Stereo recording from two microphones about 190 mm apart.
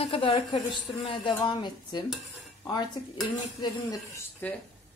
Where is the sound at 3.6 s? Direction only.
15° left (ahead or behind).